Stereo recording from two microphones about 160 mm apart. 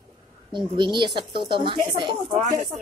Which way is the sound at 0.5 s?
30° right (ahead or behind).